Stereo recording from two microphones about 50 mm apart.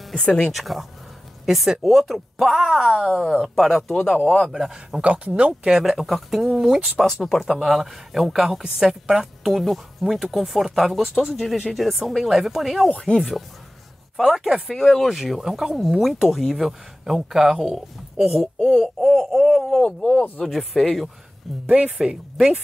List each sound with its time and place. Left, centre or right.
0.2 s speech: left
0.5 s a woman's voice: centre
3.5 s a woman's voice: centre
5.0 s a woman's voice: right; by 12.9 s centre
14.1 s a woman's voice: centre
21.6 s speech: right
21.9 s speech: centre